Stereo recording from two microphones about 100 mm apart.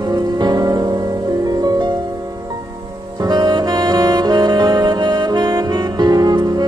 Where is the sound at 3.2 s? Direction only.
45° right (ahead or behind).